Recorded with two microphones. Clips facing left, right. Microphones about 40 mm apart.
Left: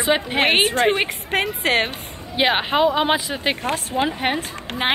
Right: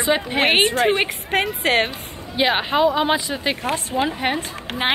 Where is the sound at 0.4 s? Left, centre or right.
Centre.